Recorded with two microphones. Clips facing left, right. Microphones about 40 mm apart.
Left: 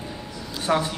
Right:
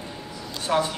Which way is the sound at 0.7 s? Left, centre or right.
Left.